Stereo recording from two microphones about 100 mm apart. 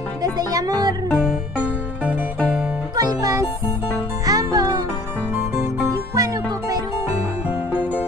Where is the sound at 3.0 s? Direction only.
35° right (ahead or behind).